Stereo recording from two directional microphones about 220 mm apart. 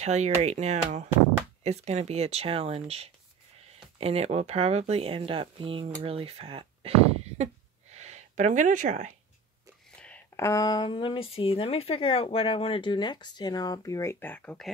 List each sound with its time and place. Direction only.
0.0 s speech: 30° right (ahead or behind)
7.9 s a sound: 30° right (ahead or behind)
9.8 s speech: 5° left (ahead or behind)